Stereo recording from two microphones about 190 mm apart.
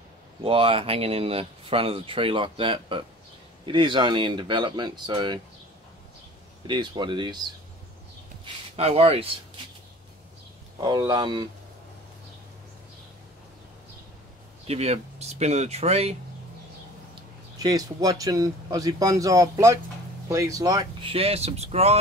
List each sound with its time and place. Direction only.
0.4 s speech: 30° right (ahead or behind)
6.7 s speech: 25° right (ahead or behind)
8.7 s speech: 30° right (ahead or behind)
10.8 s speech: 20° right (ahead or behind)
14.7 s speech: 35° right (ahead or behind)
17.6 s speech: 20° right (ahead or behind)